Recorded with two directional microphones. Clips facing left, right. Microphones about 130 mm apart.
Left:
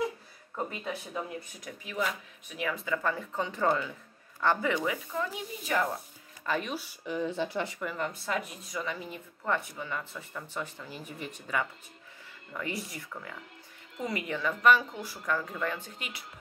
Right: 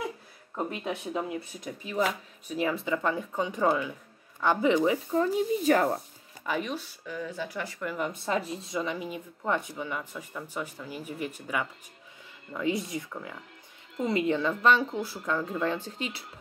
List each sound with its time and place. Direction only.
0.8 s speech: 20° right (ahead or behind)
4.9 s speech: 35° right (ahead or behind)
6.4 s speech: 5° right (ahead or behind)
7.1 s speech: 25° left (ahead or behind)
8.0 s speech: 25° right (ahead or behind); by 11.6 s 10° right (ahead or behind)
12.5 s speech: 20° right (ahead or behind)
14.0 s speech: 25° right (ahead or behind)